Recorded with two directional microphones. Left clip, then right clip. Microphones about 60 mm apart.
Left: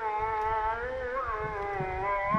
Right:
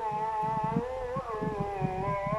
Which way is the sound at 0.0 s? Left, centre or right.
Centre.